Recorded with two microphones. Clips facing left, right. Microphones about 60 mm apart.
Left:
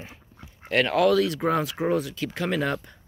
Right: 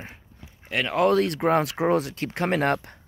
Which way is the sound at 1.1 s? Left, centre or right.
Right.